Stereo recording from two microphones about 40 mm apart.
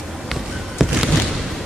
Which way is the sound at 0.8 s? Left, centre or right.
Centre.